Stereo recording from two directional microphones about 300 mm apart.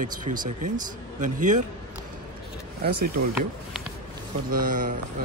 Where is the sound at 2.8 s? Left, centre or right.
Right.